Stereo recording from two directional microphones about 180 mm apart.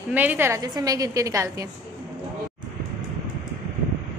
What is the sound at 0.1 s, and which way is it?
A woman's voice, 10° right (ahead or behind).